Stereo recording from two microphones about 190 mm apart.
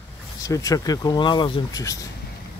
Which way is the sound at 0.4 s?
20° left (ahead or behind).